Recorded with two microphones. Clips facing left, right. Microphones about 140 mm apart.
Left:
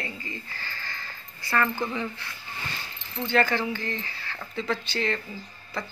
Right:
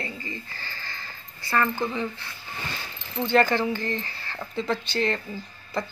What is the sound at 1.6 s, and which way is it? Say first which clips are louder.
Speech: right 1 dB; 20° right (ahead or behind).